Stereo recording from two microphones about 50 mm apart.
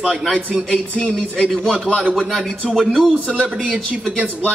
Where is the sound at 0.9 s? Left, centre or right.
Centre.